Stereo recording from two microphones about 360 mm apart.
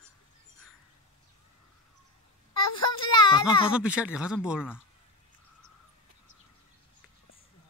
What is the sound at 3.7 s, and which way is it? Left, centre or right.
A man's voice, centre.